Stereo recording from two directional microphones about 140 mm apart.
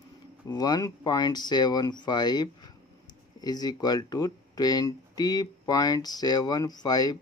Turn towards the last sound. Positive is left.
turn(degrees=30)  # may be behind; listen again after turning